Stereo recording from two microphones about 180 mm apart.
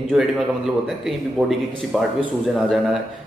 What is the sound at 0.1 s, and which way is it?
A man's voice, centre (ahead or behind).